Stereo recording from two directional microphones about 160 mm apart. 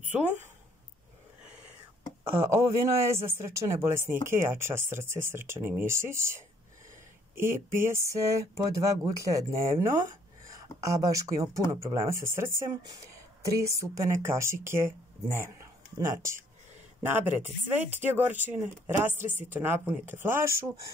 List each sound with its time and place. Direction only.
2.3 s speech: 15° right (ahead or behind)